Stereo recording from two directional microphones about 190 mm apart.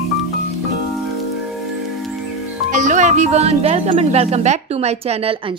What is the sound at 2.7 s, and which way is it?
A woman's voice, 40° right (ahead or behind).